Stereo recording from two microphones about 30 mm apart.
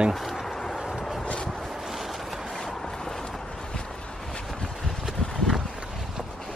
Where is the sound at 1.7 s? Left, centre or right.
Centre.